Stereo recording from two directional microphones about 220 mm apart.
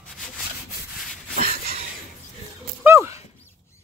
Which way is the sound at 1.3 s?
40° right (ahead or behind).